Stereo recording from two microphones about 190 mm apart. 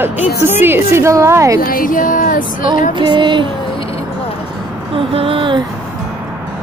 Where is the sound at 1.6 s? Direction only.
45° left (ahead or behind).